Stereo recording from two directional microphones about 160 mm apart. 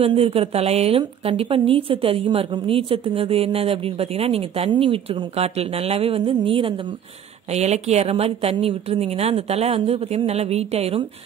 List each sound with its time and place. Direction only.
0.0 s a woman's voice: 40° right (ahead or behind)